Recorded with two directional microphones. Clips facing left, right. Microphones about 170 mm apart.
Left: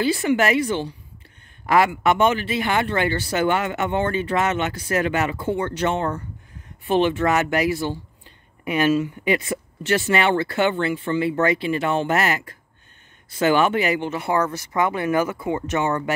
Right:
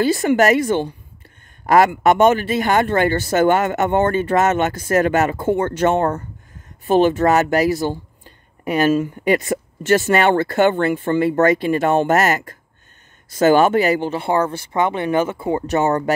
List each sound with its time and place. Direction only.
0.0 s speech: 45° right (ahead or behind)